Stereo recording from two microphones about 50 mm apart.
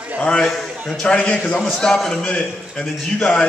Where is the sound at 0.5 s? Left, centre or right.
Centre.